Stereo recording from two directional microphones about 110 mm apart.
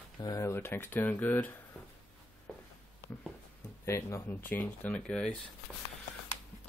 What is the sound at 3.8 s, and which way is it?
Speech, 25° left (ahead or behind).